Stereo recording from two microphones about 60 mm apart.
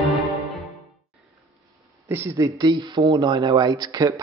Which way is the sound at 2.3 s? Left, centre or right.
Right.